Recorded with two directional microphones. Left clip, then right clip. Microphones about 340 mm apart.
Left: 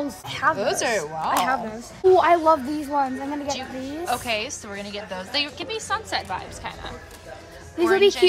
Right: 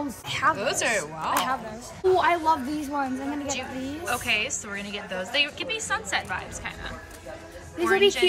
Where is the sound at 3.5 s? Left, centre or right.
Centre.